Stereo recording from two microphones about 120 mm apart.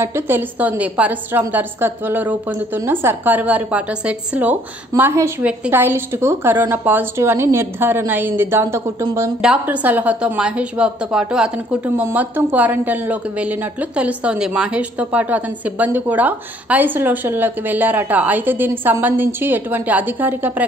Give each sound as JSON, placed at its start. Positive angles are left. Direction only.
{"t": 0.0, "sound": "a woman's voice", "side_deg": -20}
{"t": 9.4, "sound": "a woman's voice", "side_deg": -10}